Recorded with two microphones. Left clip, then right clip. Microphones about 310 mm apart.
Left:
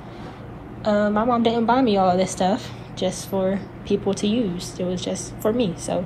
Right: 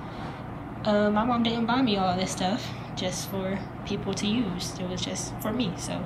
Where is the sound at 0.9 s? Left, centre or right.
Centre.